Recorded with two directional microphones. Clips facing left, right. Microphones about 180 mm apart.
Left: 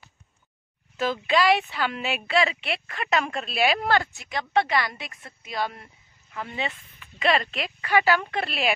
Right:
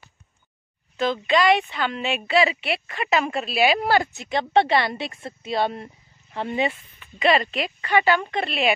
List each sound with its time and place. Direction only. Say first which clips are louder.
0.9 s speech: right 2 dB; 5° left (ahead or behind)
4.1 s speech: right 5 dB; 25° right (ahead or behind)
7.0 s speech: right 4 dB; centre (ahead or behind)